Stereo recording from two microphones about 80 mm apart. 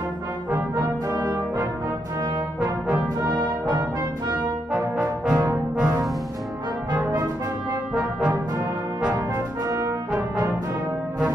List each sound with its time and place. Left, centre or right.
1.0 s brass instrument: right
2.2 s brass instrument: right
4.7 s brass instrument: centre
5.3 s brass instrument: right
7.9 s brass instrument: centre
9.7 s brass instrument: right
10.1 s brass instrument: right